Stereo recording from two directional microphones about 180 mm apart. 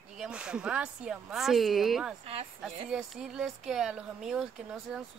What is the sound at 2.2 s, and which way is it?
Speech, 30° right (ahead or behind).